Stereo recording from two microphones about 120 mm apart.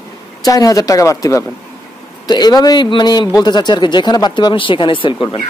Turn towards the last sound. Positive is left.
turn(degrees=45)  # may be behind; listen again after turning